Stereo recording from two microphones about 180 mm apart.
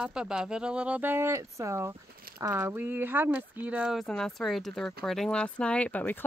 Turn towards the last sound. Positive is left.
turn(degrees=10)  # may be behind; listen again after turning